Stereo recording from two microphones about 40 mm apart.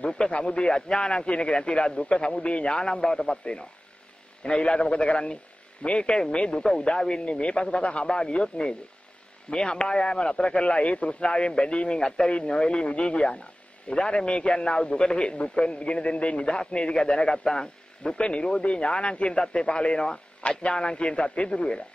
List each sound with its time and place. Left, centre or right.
0.3 s a man's voice: left
4.4 s a man's voice: left